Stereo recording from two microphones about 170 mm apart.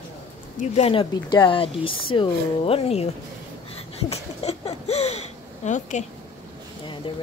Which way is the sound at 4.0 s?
35° left (ahead or behind).